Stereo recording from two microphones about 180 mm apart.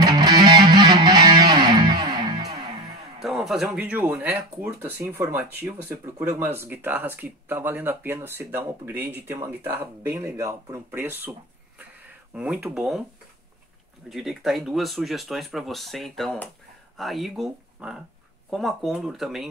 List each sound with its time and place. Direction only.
0.0 s music: 20° right (ahead or behind)
3.2 s speech: centre (ahead or behind)
12.4 s speech: 5° right (ahead or behind)
14.0 s speech: centre (ahead or behind)